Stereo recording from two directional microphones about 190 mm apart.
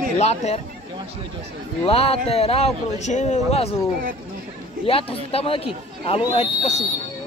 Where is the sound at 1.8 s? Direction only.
35° left (ahead or behind).